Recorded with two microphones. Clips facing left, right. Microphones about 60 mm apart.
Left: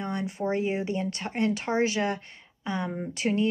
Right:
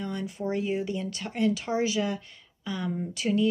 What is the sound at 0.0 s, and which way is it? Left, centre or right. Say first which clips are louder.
Speech: left 2 dB; left.